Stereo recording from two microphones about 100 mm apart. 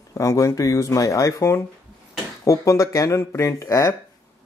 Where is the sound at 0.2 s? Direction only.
30° left (ahead or behind).